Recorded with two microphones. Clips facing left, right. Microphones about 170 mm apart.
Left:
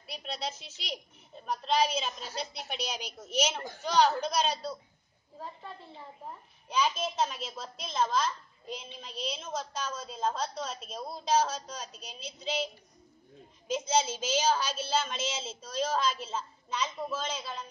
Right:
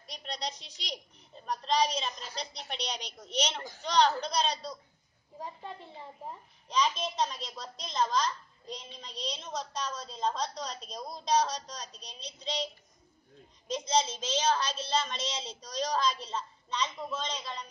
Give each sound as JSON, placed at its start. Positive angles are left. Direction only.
{"t": 0.0, "sound": "a woman's voice", "side_deg": 5}
{"t": 5.3, "sound": "a child's voice", "side_deg": -15}
{"t": 6.7, "sound": "a woman's voice", "side_deg": 5}
{"t": 13.7, "sound": "a woman's voice", "side_deg": 5}